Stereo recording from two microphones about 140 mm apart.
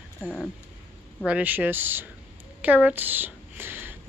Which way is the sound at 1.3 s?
10° right (ahead or behind).